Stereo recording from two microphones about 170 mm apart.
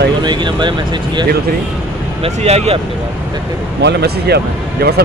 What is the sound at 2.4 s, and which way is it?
Speech, 40° right (ahead or behind).